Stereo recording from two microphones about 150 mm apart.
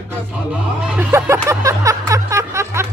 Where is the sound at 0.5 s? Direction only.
10° right (ahead or behind).